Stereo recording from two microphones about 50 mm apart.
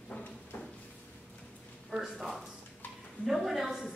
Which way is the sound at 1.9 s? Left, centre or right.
Centre.